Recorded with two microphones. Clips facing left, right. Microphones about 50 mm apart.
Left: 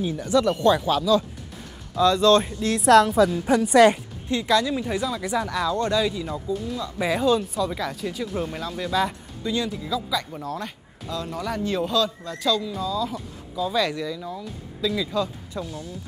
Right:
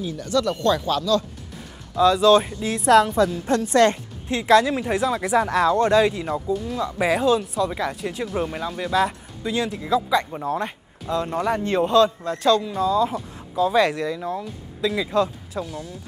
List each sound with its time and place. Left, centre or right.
0.0 s speech: centre
2.0 s a woman's voice: centre
3.4 s speech: centre
4.6 s speech: right
5.5 s speech: right
7.2 s speech: centre
9.8 s speech: right
15.5 s speech: centre